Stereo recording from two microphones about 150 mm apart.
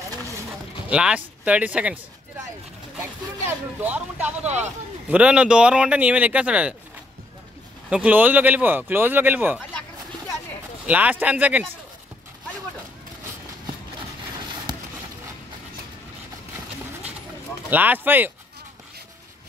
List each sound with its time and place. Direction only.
0.8 s speech: 5° right (ahead or behind)
3.0 s speech: 15° right (ahead or behind)
7.9 s speech: 10° right (ahead or behind)
10.9 s speech: 10° right (ahead or behind)
17.6 s speech: 10° right (ahead or behind)